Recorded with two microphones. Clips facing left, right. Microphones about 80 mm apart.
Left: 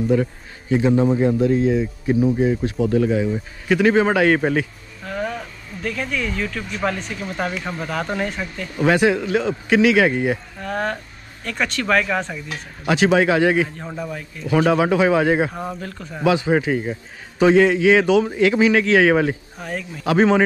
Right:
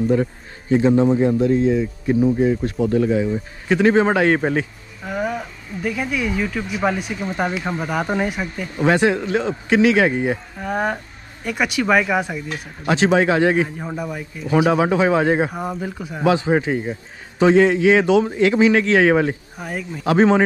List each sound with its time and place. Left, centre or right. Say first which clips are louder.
0.1 s a man's voice: even; right
1.7 s speech: right 1 dB; centre
3.6 s a man's voice: right 1 dB; right
5.0 s speech: right 2 dB; centre
8.8 s a man's voice: even; right
10.6 s speech: right 2 dB; centre
12.8 s a man's voice: even; right
13.7 s speech: right 2 dB; centre
14.7 s a man's voice: left 1 dB; right
15.5 s speech: right 3 dB; centre
16.3 s a man's voice: even; right
19.5 s speech: even; centre
20.1 s a man's voice: right 1 dB; right